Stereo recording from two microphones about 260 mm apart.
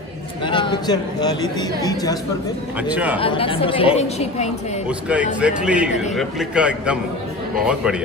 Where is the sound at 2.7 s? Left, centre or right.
Centre.